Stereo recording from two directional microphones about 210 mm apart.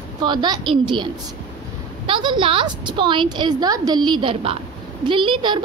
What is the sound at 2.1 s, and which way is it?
A woman's voice, 25° right (ahead or behind).